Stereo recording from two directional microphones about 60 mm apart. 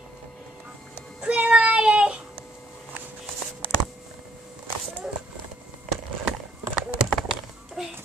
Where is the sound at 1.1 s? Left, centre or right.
Centre.